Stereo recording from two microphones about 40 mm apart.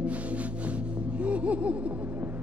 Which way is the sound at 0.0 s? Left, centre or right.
Right.